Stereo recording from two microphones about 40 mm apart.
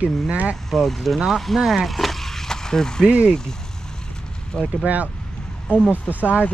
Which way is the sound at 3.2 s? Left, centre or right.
Centre.